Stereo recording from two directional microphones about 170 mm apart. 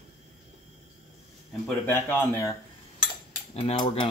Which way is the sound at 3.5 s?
35° left (ahead or behind).